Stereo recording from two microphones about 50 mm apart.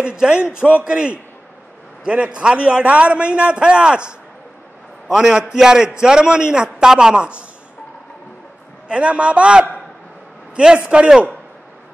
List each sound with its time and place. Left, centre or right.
0.0 s a man's voice: centre
8.8 s a man's voice: right